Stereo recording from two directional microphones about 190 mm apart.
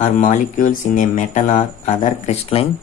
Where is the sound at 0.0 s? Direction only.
40° left (ahead or behind).